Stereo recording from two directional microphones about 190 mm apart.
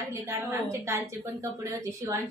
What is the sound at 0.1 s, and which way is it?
A woman's voice, 15° right (ahead or behind).